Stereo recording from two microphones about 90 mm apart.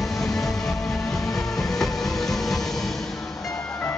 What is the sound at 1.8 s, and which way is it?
Train, 5° left (ahead or behind).